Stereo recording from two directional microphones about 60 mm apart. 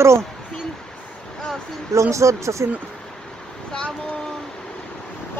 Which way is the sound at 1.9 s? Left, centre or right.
Right.